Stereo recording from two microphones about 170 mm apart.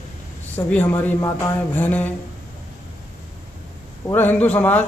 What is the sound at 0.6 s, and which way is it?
A man's voice, 10° left (ahead or behind).